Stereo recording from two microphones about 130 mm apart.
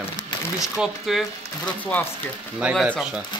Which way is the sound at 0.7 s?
5° right (ahead or behind).